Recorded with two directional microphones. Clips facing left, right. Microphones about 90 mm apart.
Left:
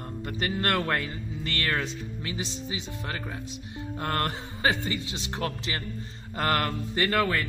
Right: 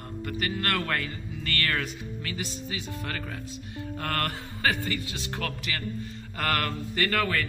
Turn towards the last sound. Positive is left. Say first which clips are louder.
# left 2 dB
turn(degrees=25)  # may be behind; listen again after turning